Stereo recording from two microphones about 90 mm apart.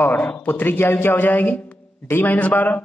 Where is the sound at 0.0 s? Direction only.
20° left (ahead or behind).